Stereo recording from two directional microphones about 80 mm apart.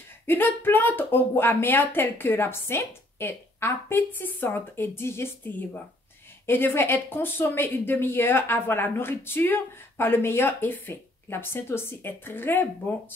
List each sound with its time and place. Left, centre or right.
0.3 s speech: left